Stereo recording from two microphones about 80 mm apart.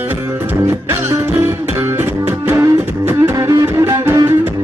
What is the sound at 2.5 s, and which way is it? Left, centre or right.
Music, right.